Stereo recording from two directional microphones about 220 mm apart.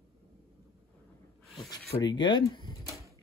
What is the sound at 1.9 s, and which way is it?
Speech, 20° left (ahead or behind).